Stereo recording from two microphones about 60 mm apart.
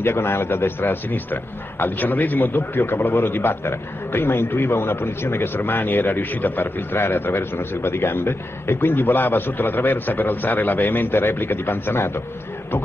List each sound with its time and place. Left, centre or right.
0.0 s a man's voice: left